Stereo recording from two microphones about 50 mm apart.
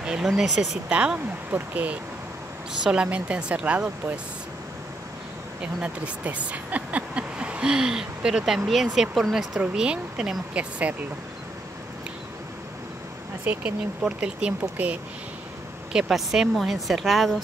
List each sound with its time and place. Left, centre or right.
0.2 s speech: centre
0.8 s speech: right
1.5 s speech: right
2.8 s speech: right
5.6 s speech: right
8.9 s speech: centre
9.8 s speech: centre
10.5 s speech: right
13.5 s speech: right
14.0 s speech: centre
14.6 s speech: right
15.9 s speech: centre